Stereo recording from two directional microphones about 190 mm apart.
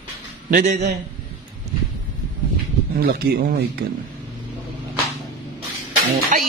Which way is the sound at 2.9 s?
55° right (ahead or behind).